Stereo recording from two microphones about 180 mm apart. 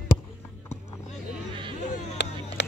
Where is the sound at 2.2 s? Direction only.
80° left.